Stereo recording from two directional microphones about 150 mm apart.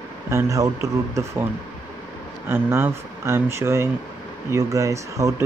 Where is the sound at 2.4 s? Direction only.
15° right (ahead or behind).